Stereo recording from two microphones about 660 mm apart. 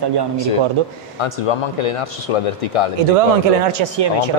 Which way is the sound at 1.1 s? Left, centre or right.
Left.